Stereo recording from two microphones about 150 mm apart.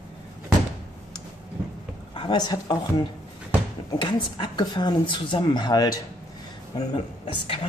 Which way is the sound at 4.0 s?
30° left (ahead or behind).